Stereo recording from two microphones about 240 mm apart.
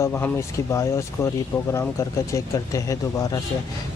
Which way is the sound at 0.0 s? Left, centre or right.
Centre.